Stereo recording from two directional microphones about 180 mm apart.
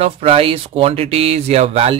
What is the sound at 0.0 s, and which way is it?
Speech, 35° right (ahead or behind).